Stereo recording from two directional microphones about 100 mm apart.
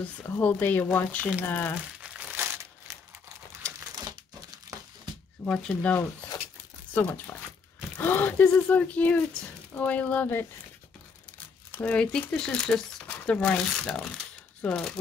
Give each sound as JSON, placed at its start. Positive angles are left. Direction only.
{"t": 0.2, "sound": "speech", "side_deg": 15}
{"t": 2.0, "sound": "crumpling", "side_deg": -15}
{"t": 2.9, "sound": "crumpling", "side_deg": -30}
{"t": 5.4, "sound": "speech", "side_deg": 10}
{"t": 11.7, "sound": "speech", "side_deg": 15}